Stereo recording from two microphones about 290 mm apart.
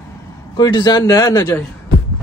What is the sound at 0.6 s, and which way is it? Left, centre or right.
A man's voice, centre.